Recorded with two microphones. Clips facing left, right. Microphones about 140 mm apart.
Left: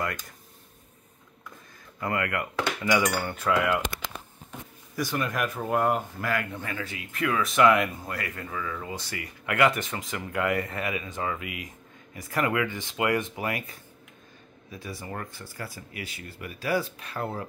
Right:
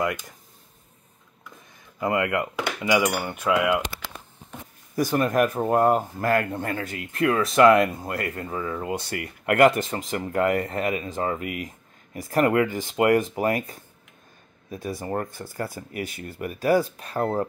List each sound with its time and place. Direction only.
0.0 s cutlery: 20° right (ahead or behind)
2.0 s speech: 20° right (ahead or behind)
3.0 s cutlery: 10° right (ahead or behind)
4.9 s speech: 40° right (ahead or behind)
7.1 s speech: 35° right (ahead or behind)
8.8 s speech: 55° right (ahead or behind)